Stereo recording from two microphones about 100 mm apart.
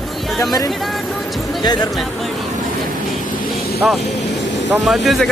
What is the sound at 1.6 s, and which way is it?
Speech, 45° left (ahead or behind).